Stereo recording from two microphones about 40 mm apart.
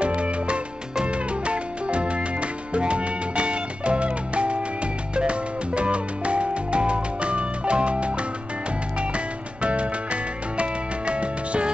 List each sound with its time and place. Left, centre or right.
0.0 s music: right